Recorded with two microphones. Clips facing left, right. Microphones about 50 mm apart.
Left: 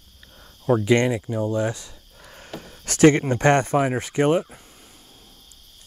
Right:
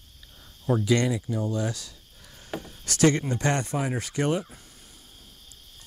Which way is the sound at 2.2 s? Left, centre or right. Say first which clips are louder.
Left 8 dB; left.